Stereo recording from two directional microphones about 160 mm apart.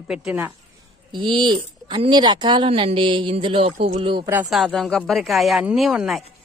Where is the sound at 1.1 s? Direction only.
30° right (ahead or behind).